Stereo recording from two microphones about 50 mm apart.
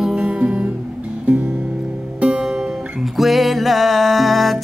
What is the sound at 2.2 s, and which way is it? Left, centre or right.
Music, centre.